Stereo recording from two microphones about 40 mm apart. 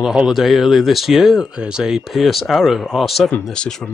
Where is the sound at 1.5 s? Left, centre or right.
Right.